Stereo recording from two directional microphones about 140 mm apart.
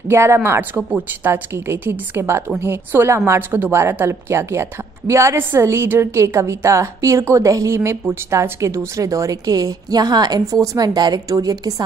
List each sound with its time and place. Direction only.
0.1 s a woman's voice: 20° right (ahead or behind)